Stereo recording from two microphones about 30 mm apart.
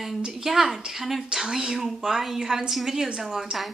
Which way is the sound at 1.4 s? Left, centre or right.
Right.